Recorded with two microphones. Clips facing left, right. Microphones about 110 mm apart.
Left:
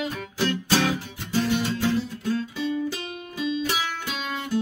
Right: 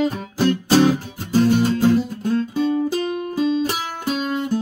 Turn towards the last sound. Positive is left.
turn(degrees=-45)  # may be behind; listen again after turning